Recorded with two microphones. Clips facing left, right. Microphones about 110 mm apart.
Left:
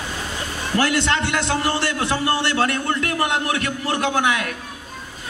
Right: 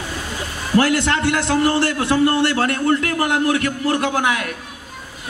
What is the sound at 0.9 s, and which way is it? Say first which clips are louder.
A man's voice: right 2 dB; 25° left (ahead or behind).